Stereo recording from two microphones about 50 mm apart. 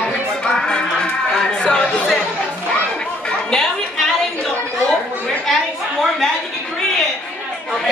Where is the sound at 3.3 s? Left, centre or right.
Centre.